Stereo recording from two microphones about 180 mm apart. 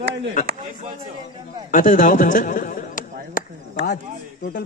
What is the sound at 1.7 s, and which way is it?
A man's voice, 45° left (ahead or behind).